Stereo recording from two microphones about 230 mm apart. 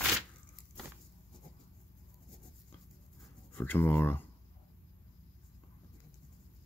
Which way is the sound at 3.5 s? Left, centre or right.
Centre.